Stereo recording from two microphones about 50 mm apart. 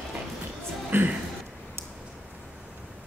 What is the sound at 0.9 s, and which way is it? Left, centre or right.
Speech, right.